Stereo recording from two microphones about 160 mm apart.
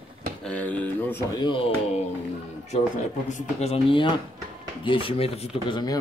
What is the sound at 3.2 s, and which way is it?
A man's voice, 45° left (ahead or behind).